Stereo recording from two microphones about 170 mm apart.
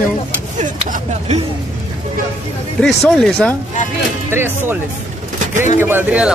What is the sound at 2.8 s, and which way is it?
Speech, 5° left (ahead or behind).